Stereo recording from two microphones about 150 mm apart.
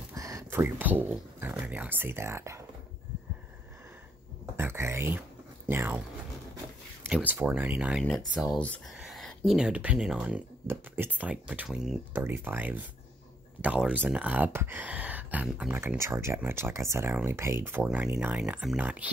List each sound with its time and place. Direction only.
0.1 s speech: 20° right (ahead or behind)
4.6 s speech: 15° right (ahead or behind)
7.0 s speech: 10° right (ahead or behind)
8.4 s speech: 5° left (ahead or behind)